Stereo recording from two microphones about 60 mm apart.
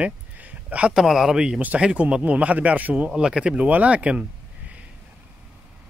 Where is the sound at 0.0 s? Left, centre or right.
Right.